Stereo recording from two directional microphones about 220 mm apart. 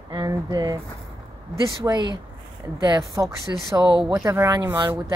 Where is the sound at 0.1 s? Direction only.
15° right (ahead or behind).